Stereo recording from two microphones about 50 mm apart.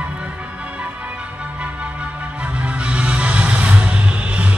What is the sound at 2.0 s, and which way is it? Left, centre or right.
Music, right.